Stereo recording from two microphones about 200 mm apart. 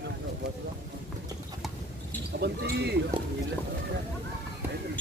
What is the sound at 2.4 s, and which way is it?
Speech, 55° right (ahead or behind).